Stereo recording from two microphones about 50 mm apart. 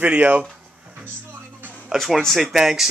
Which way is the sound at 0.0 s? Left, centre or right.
Right.